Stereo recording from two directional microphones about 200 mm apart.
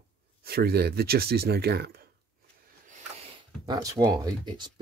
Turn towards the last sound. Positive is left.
turn(degrees=-20)  # may be behind; listen again after turning